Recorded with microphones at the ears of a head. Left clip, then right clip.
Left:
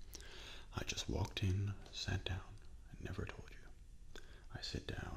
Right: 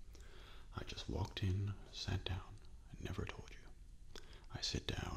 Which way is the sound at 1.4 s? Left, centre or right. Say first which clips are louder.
Left 1 dB; centre.